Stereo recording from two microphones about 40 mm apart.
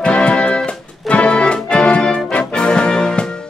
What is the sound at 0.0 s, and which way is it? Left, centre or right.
Music, left.